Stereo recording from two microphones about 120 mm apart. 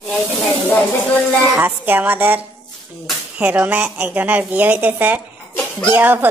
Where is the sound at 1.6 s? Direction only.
15° right (ahead or behind).